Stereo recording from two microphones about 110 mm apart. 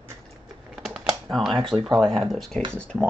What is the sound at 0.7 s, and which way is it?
Typewriter, centre (ahead or behind).